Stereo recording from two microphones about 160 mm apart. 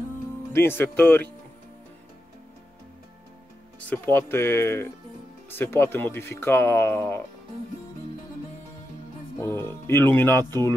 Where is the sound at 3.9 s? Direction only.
10° left (ahead or behind).